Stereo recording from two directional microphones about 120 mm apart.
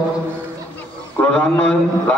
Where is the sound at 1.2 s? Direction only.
10° left (ahead or behind).